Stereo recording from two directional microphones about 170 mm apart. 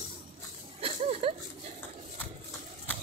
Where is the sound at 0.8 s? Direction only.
35° right (ahead or behind).